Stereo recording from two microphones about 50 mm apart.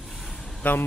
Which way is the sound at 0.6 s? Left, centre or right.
Left.